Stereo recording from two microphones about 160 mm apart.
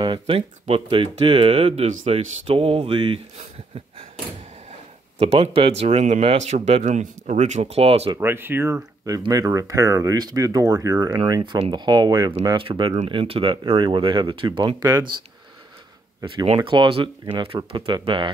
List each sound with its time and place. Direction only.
0.0 s speech: 30° right (ahead or behind)
5.2 s speech: 40° right (ahead or behind)
8.2 s speech: 15° right (ahead or behind)
16.4 s speech: 35° right (ahead or behind)